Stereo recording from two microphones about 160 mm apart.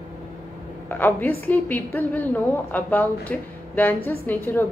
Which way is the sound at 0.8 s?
10° left (ahead or behind).